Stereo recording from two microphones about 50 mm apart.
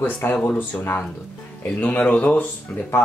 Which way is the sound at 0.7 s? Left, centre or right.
Left.